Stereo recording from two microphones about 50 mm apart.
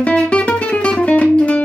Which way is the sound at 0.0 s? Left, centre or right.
Left.